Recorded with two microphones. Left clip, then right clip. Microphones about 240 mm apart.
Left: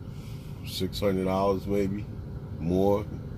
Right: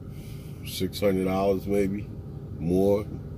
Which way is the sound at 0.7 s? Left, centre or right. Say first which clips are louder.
Right 2 dB; centre.